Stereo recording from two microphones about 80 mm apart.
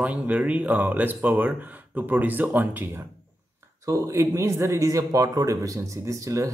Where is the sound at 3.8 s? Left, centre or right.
Right.